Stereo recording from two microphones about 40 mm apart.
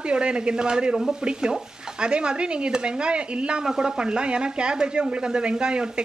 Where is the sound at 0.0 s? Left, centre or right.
Right.